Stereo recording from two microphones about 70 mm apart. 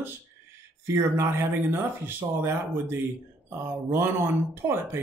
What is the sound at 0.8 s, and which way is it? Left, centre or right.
Speech, right.